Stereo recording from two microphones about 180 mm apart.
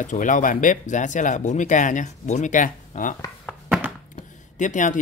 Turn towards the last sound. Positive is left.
turn(degrees=45)  # may be behind; listen again after turning